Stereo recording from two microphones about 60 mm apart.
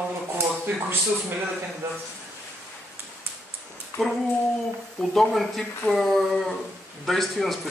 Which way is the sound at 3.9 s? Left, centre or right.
Left.